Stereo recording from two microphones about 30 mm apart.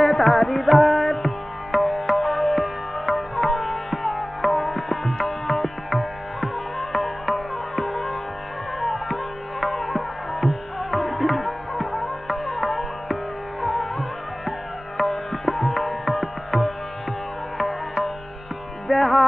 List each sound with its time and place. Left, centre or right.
0.0 s music: centre